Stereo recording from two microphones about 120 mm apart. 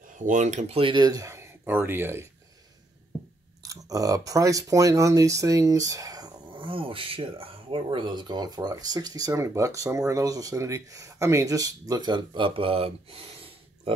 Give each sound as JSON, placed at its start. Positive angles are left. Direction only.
{"t": 0.2, "sound": "speech", "side_deg": -85}
{"t": 0.7, "sound": "speech", "side_deg": -45}
{"t": 1.0, "sound": "speech", "side_deg": -30}
{"t": 3.6, "sound": "speech", "side_deg": -30}